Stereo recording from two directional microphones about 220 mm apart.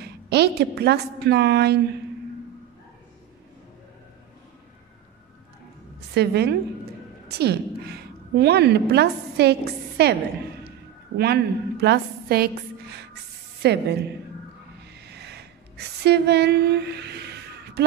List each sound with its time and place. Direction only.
0.0 s a woman's voice: 50° right (ahead or behind)
6.1 s a woman's voice: 45° right (ahead or behind)
11.1 s a woman's voice: 45° right (ahead or behind)
14.9 s a sound: 50° right (ahead or behind)